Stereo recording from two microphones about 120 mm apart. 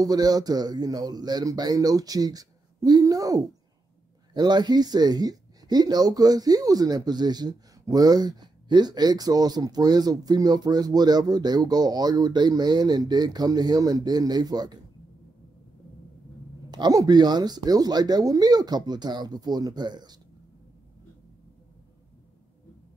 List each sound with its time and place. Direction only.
0.0 s speech: 30° right (ahead or behind)
16.7 s speech: 35° right (ahead or behind)